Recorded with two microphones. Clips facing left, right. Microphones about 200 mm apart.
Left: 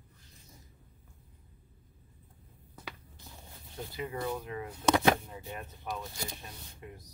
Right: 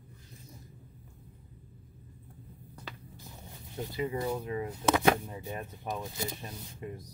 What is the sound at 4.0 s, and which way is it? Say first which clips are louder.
Speech: right 3 dB; 15° right (ahead or behind).